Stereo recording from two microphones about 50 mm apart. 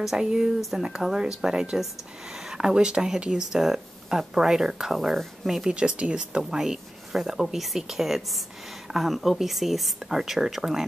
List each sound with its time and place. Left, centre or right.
0.0 s speech: centre
1.0 s speech: centre
5.7 s speech: right